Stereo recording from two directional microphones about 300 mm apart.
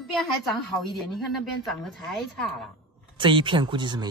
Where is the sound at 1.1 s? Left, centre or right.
Centre.